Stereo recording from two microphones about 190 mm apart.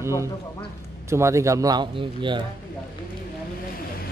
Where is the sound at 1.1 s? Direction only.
15° right (ahead or behind).